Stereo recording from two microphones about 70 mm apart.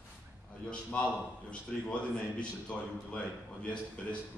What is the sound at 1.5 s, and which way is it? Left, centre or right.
A man's voice, centre.